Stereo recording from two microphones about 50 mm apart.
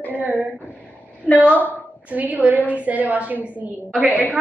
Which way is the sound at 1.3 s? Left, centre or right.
Left.